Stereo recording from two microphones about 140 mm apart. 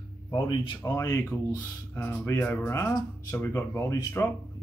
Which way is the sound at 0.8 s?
25° left (ahead or behind).